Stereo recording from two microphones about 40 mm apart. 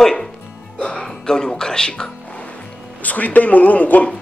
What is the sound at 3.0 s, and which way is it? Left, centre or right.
Speech, left.